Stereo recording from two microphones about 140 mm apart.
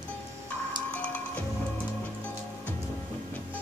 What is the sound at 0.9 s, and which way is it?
Music, 10° left (ahead or behind).